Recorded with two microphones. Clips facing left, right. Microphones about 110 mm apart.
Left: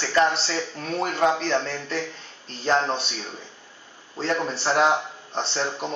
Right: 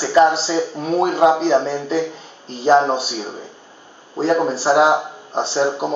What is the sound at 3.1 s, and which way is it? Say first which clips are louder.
Speech: right 8 dB; 30° right (ahead or behind).